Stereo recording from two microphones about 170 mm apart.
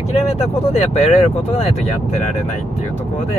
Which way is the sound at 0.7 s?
35° left (ahead or behind).